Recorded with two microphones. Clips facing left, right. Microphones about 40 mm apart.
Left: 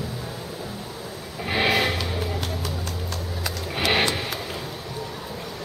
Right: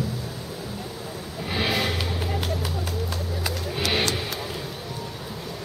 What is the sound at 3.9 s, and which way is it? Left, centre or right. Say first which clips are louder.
Music: left 3 dB; left.